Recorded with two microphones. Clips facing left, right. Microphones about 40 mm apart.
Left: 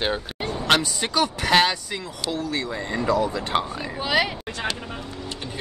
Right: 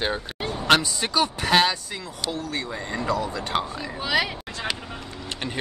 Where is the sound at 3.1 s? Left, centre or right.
Left.